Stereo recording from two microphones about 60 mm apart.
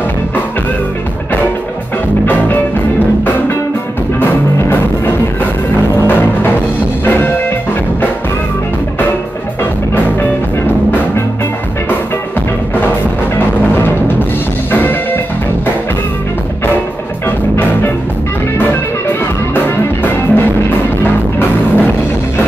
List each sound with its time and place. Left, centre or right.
2.2 s music: left
4.2 s music: left
14.7 s music: left
18.7 s music: left